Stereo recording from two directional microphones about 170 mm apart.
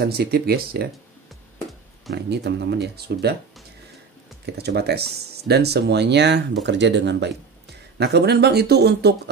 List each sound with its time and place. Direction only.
0.0 s speech: 70° right (ahead or behind)
2.1 s speech: 80° right
4.6 s speech: 70° right (ahead or behind); by 7.3 s 90° right
8.0 s speech: 75° right (ahead or behind)